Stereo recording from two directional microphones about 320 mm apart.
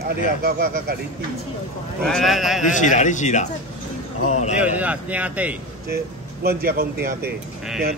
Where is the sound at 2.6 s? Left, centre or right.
Left.